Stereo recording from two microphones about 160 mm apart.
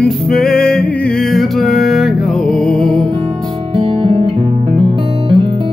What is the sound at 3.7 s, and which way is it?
Music, 35° right (ahead or behind).